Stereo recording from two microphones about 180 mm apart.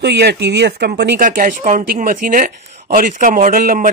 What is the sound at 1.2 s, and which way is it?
Speech, 45° right (ahead or behind).